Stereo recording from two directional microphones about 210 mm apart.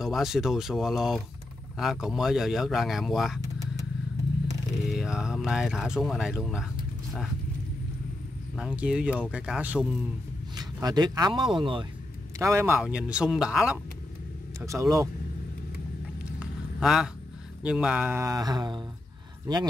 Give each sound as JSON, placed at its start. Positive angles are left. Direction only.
{"t": 0.0, "sound": "speech", "side_deg": 0}
{"t": 4.8, "sound": "speech", "side_deg": -5}
{"t": 8.5, "sound": "speech", "side_deg": -5}
{"t": 10.5, "sound": "speech", "side_deg": -20}
{"t": 12.4, "sound": "speech", "side_deg": -15}
{"t": 14.6, "sound": "speech", "side_deg": -15}
{"t": 16.3, "sound": "a sound", "side_deg": -5}
{"t": 17.6, "sound": "speech", "side_deg": -5}